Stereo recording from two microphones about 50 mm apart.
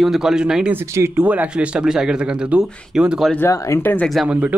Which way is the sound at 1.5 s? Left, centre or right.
Right.